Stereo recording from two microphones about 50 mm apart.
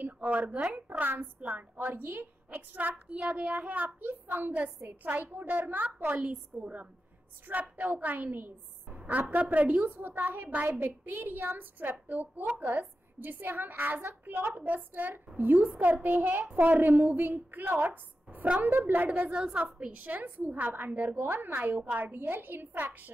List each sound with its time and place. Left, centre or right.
0.0 s a sound: right
0.6 s a child's voice: centre
0.8 s a woman's voice: right
3.1 s a child's voice: right
6.2 s a child's voice: right
7.5 s a woman's voice: right
18.8 s a woman's voice: right
19.0 s a woman's voice: right
19.3 s a child's voice: right
20.0 s a woman's voice: right